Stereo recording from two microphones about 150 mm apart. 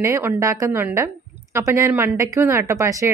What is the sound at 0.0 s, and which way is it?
A woman's voice, 15° right (ahead or behind).